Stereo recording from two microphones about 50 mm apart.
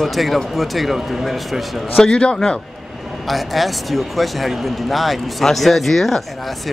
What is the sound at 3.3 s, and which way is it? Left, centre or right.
Speech, centre.